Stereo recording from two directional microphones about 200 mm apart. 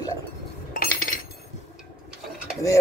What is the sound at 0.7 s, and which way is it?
Chink, 45° left (ahead or behind).